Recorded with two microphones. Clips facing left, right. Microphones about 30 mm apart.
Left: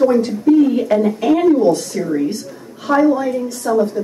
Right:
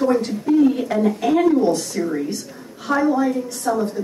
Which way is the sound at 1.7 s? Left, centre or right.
Centre.